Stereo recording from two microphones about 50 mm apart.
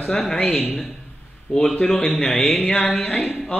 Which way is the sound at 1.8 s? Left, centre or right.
Centre.